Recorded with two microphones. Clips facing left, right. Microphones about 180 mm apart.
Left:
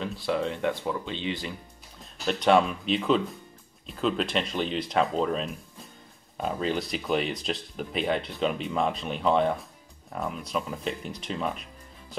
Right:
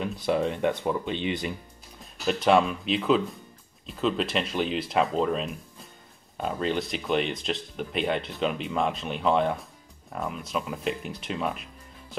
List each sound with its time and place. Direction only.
0.0 s speech: 20° right (ahead or behind)
2.0 s speech: centre (ahead or behind)